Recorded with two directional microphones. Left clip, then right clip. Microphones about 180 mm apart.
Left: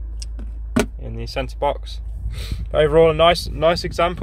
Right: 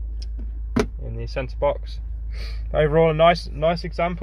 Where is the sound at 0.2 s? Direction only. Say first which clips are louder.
Left 7 dB; 5° left (ahead or behind).